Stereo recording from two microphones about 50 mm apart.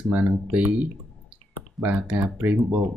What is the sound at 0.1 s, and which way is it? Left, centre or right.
Speech, right.